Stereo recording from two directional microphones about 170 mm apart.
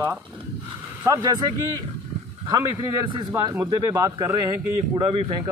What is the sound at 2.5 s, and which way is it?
Speech, 30° right (ahead or behind).